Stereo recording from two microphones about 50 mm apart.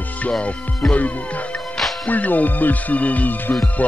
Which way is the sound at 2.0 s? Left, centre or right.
Left.